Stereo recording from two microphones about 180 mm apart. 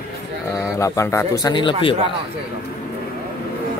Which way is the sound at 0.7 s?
15° left (ahead or behind).